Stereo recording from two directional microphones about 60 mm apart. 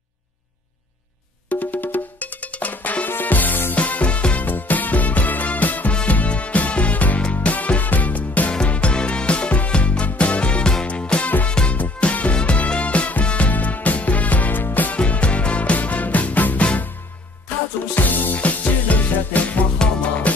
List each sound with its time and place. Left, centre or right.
1.5 s music: left
17.9 s music: left